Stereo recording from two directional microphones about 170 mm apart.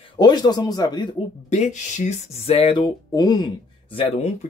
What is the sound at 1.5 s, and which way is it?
Speech, 45° left (ahead or behind).